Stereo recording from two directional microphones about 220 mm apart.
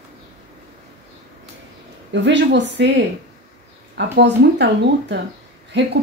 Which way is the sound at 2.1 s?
55° right (ahead or behind).